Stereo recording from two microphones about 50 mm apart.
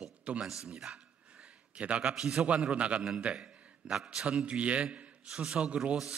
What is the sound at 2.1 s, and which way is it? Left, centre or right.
Speech, centre.